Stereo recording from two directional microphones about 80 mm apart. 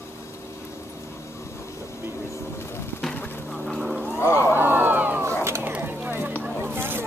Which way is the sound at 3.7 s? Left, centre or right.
Centre.